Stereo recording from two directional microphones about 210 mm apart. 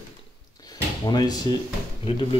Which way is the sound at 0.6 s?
20° left (ahead or behind).